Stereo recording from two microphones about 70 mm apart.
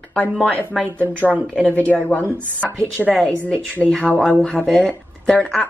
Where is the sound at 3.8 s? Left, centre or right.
Centre.